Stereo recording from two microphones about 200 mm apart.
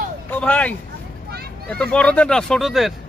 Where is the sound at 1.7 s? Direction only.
5° left (ahead or behind).